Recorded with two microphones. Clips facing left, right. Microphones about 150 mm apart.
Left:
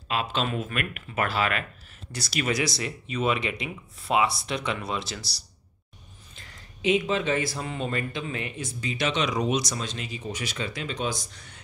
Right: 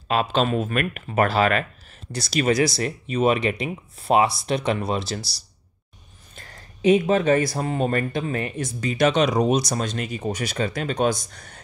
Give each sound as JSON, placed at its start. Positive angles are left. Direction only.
{"t": 0.1, "sound": "speech", "side_deg": -40}
{"t": 3.1, "sound": "speech", "side_deg": -45}
{"t": 6.3, "sound": "speech", "side_deg": -50}
{"t": 9.7, "sound": "speech", "side_deg": -50}